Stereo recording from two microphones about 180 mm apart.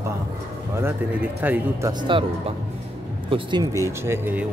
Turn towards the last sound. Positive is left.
turn(degrees=-10)  # may be behind; listen again after turning